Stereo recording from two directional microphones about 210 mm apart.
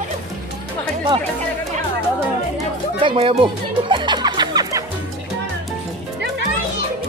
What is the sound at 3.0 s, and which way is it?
Music, 25° right (ahead or behind).